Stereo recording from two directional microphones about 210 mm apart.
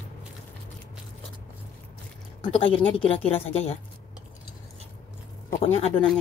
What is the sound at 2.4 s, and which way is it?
A woman's voice, 25° left (ahead or behind).